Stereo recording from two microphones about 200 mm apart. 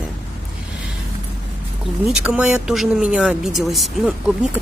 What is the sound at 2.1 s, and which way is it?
A woman's voice, 5° right (ahead or behind).